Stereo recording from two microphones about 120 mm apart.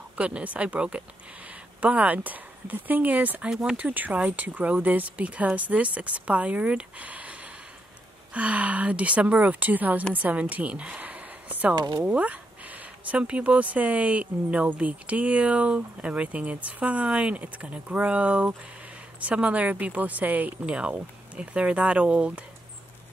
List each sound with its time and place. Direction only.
0.2 s speech: 10° right (ahead or behind)
11.7 s speech: 35° right (ahead or behind)
12.0 s speech: 10° right (ahead or behind)